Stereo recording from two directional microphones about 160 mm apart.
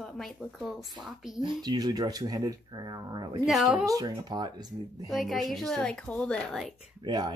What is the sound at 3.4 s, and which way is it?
Speech, centre (ahead or behind).